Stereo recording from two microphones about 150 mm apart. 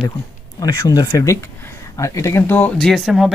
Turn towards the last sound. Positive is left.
turn(degrees=0)  # may be behind; listen again after turning